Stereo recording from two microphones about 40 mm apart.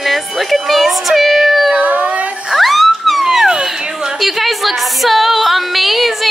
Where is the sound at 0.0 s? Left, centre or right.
Centre.